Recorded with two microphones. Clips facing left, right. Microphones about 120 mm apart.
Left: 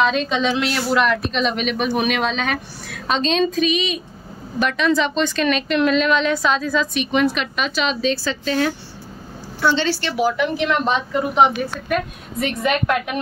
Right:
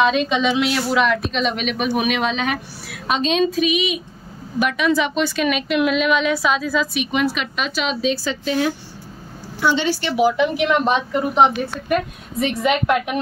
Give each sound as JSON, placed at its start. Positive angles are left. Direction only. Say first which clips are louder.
{"t": 0.0, "sound": "a woman's voice", "louder": "right 1 dB", "side_deg": -5}
{"t": 10.7, "sound": "a woman's voice", "louder": "right 2 dB", "side_deg": -5}